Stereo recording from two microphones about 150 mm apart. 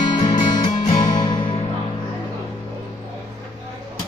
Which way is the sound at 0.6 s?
30° left (ahead or behind).